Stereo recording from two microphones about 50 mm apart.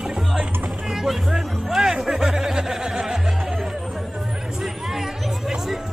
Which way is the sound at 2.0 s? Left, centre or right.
Centre.